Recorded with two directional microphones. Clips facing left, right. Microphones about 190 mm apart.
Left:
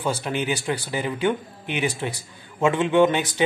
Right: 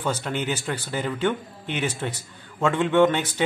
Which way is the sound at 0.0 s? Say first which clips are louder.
Left 1 dB; 10° left (ahead or behind).